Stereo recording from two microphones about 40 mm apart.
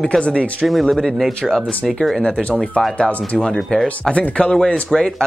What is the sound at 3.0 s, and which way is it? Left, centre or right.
Speech, left.